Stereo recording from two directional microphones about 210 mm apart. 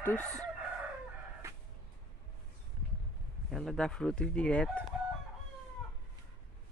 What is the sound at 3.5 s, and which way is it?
Speech, centre (ahead or behind).